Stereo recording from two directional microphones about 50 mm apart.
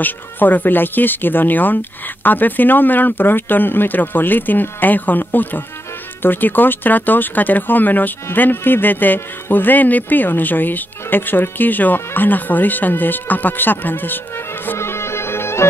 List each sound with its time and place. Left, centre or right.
0.0 s speech: left
14.8 s music: left